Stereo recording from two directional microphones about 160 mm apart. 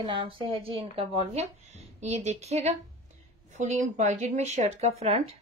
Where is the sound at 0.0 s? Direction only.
30° right (ahead or behind).